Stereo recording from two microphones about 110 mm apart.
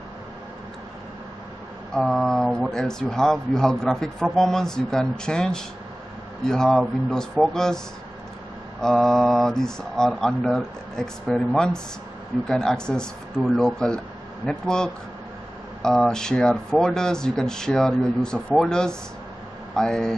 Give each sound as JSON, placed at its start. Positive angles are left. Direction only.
{"t": 2.0, "sound": "speech", "side_deg": 5}
{"t": 8.8, "sound": "speech", "side_deg": 5}